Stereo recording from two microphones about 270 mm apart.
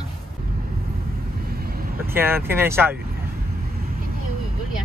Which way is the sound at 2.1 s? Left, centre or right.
Centre.